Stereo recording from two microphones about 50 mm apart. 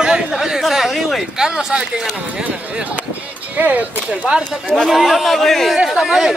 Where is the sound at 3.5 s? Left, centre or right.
Right.